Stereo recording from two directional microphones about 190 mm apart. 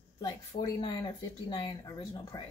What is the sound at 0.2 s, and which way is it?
Speech, 20° left (ahead or behind).